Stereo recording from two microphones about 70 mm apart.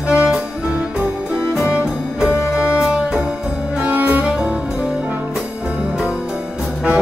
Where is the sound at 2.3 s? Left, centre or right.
Left.